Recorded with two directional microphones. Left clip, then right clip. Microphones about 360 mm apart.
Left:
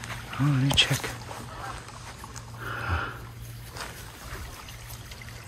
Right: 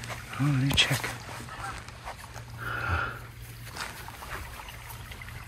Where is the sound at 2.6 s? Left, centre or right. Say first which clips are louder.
Right 1 dB; centre.